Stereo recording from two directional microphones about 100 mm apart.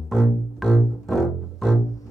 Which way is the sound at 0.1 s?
Centre (ahead or behind).